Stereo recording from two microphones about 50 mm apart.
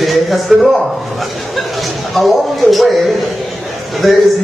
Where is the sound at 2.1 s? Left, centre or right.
Centre.